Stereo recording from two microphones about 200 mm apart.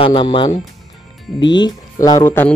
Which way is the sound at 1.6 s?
20° left (ahead or behind).